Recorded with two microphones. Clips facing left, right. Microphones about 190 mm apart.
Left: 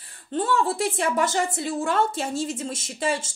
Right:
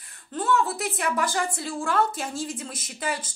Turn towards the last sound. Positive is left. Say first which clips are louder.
# left 5 dB
turn(degrees=25)  # may be behind; listen again after turning